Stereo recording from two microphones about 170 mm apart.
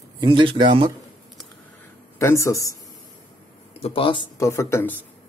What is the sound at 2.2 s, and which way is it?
Speech, 15° left (ahead or behind).